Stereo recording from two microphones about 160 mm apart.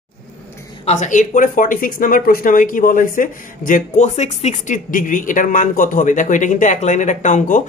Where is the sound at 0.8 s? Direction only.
50° left (ahead or behind).